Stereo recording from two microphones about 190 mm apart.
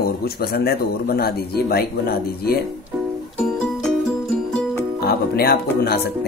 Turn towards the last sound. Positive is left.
turn(degrees=55)  # may be behind; listen again after turning